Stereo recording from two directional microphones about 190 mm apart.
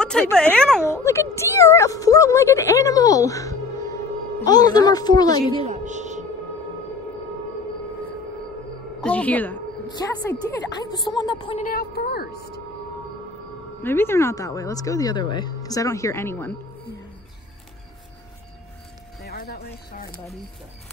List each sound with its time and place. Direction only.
0.0 s a sound: 5° left (ahead or behind)
0.4 s speech: 5° left (ahead or behind)
0.8 s speech: 15° left (ahead or behind)
5.5 s music: 30° right (ahead or behind)
9.0 s speech: 5° left (ahead or behind)
10.9 s speech: 20° left (ahead or behind)
11.6 s a woman's voice: 50° left (ahead or behind)
13.8 s speech: 10° left (ahead or behind)
19.2 s music: 55° left (ahead or behind)